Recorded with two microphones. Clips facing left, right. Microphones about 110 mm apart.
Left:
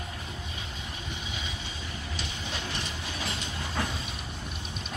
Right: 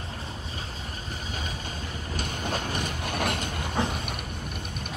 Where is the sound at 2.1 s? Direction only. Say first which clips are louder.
Right 9 dB; 50° right (ahead or behind).